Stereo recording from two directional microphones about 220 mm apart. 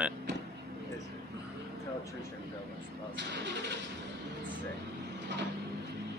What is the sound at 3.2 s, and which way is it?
Vehicle, 55° right (ahead or behind).